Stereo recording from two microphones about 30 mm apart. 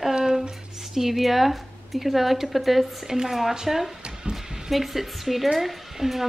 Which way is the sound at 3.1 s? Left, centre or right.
Centre.